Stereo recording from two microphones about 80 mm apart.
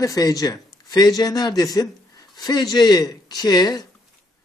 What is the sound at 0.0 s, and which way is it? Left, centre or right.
Speech, left.